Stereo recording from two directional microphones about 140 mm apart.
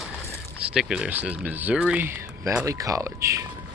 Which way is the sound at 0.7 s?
5° right (ahead or behind).